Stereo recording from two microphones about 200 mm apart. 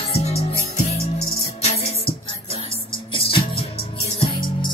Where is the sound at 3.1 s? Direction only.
25° left (ahead or behind).